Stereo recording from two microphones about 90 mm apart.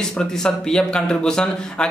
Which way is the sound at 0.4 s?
10° left (ahead or behind).